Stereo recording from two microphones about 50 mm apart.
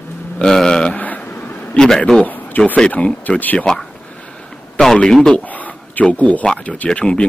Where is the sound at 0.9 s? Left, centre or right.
Left.